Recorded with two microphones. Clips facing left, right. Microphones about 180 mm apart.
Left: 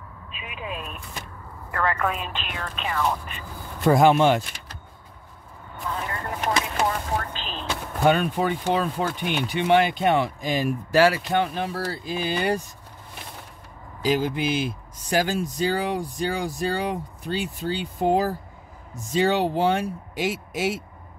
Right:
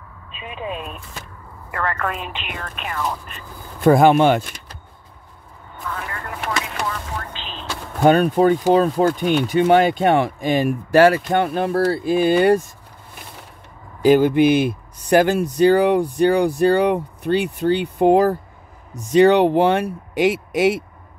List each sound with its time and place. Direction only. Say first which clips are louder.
0.3 s speech: right 6 dB; 30° right (ahead or behind)
1.8 s a woman's voice: even; 5° left (ahead or behind)
3.8 s speech: right 4 dB; 55° right (ahead or behind)
6.9 s a sound: left 2 dB; 40° left (ahead or behind)
8.0 s speech: right 7 dB; 45° right (ahead or behind)
14.0 s speech: right 10 dB; 60° right (ahead or behind)